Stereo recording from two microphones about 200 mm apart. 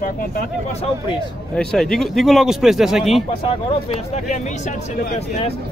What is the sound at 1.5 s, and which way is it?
Speech, 5° left (ahead or behind).